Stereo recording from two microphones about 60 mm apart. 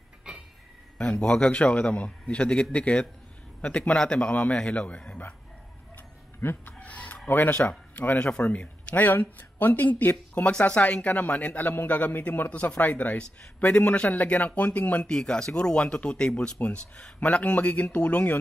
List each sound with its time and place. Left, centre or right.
0.9 s a man's voice: centre
6.4 s chicken: left
7.2 s a man's voice: left
15.0 s a man's voice: centre